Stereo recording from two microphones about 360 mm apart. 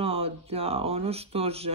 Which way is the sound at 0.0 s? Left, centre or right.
Centre.